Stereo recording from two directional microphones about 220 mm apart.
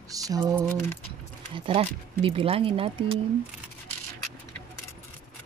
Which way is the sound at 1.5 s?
25° right (ahead or behind).